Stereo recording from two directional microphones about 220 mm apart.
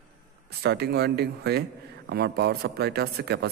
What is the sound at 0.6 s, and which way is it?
A man's voice, 50° right (ahead or behind).